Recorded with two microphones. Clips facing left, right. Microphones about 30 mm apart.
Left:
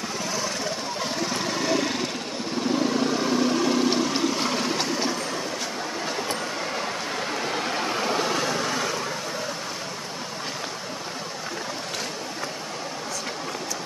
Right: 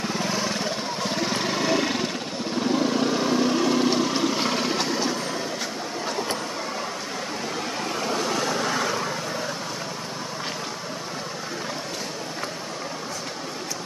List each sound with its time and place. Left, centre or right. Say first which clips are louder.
0.2 s vehicle: even; right; by 5.0 s centre
7.7 s vehicle: left 1 dB; left; by 9.1 s centre